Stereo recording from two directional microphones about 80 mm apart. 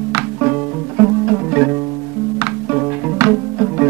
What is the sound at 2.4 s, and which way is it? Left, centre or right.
Music, right.